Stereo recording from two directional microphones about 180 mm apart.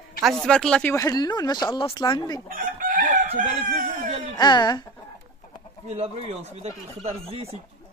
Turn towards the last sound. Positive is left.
turn(degrees=-35)  # may be behind; listen again after turning